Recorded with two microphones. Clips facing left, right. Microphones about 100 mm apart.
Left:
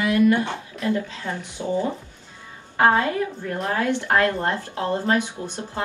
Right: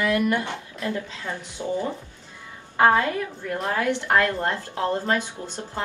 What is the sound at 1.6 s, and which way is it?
A woman's voice, 20° left (ahead or behind).